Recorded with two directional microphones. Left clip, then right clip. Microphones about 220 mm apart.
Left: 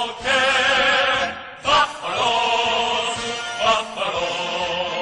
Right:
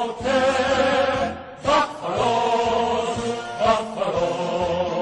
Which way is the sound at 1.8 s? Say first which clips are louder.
Left 2 dB; 10° left (ahead or behind).